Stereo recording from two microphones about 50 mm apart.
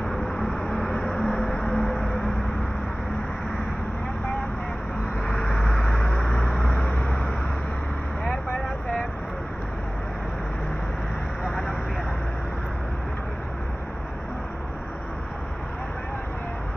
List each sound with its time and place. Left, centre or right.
0.0 s vehicle: centre
0.8 s a sound: centre
5.2 s vehicle: left
6.1 s vehicle: centre
6.6 s vehicle: left